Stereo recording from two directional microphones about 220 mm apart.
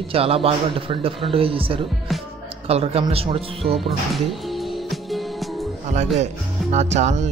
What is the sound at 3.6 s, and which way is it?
Music, centre (ahead or behind).